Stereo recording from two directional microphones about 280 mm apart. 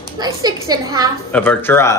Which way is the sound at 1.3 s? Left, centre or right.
Centre.